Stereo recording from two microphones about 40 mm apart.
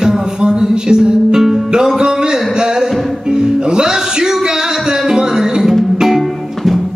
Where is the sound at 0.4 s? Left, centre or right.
Centre.